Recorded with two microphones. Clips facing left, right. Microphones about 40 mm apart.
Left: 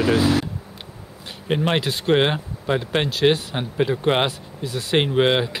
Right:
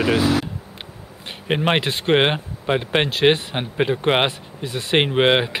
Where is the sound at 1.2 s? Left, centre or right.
Right.